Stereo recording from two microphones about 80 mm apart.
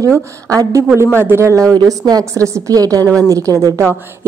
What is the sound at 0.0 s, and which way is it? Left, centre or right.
A woman's voice, right.